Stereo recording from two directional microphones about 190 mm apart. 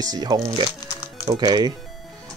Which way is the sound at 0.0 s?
20° right (ahead or behind).